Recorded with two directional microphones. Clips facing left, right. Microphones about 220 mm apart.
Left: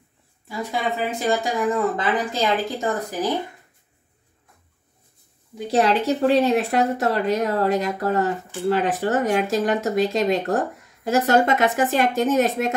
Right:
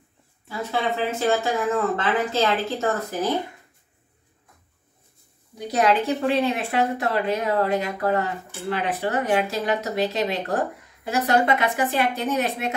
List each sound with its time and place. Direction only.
0.5 s speech: 15° left (ahead or behind)
5.7 s speech: 35° left (ahead or behind)